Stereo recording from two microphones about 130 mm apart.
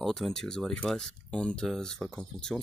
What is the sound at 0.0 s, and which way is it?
Speech, centre (ahead or behind).